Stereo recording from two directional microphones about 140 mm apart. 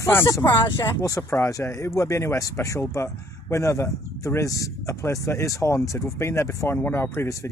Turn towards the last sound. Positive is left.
turn(degrees=20)  # may be behind; listen again after turning